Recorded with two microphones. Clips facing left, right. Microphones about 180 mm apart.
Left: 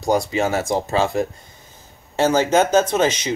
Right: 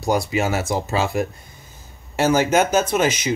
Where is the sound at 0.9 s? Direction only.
25° left (ahead or behind).